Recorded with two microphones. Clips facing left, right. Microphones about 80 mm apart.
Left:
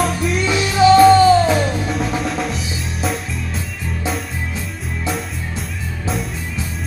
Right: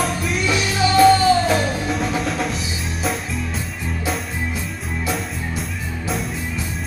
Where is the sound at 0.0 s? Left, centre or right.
Centre.